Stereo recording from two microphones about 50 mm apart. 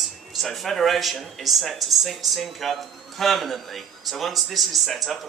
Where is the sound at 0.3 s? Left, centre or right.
Centre.